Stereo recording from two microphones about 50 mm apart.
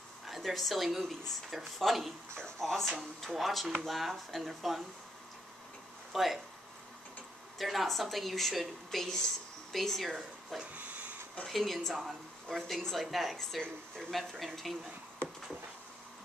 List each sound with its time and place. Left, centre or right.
0.3 s speech: centre
6.1 s speech: centre
7.5 s speech: centre
10.7 s a sound: right
11.4 s speech: centre